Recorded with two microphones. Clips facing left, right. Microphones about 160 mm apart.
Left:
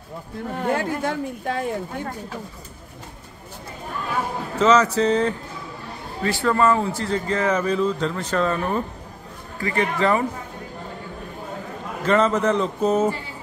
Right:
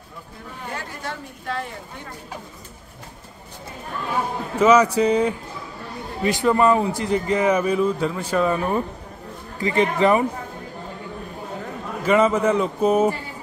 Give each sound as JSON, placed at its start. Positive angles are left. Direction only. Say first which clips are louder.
{"t": 0.6, "sound": "speech", "louder": "left 10 dB", "side_deg": 55}
{"t": 4.6, "sound": "a man's voice", "louder": "right 2 dB", "side_deg": -10}
{"t": 12.0, "sound": "a man's voice", "louder": "right 1 dB", "side_deg": -10}